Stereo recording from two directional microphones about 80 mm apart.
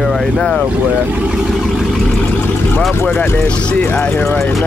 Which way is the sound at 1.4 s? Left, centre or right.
Centre.